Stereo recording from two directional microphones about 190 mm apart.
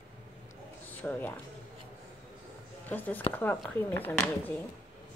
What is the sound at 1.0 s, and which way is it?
Speech, 10° left (ahead or behind).